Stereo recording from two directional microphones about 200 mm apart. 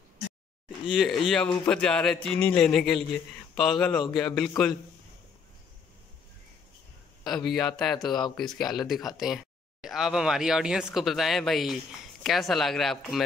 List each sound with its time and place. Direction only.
0.8 s speech: centre (ahead or behind)
7.2 s speech: centre (ahead or behind)